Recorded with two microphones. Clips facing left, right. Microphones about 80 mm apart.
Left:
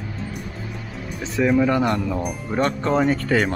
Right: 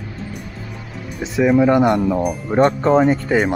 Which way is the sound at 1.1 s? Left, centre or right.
Centre.